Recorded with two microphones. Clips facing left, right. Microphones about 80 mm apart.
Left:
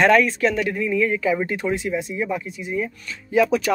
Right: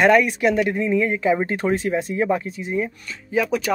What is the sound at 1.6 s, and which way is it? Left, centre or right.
Speech, right.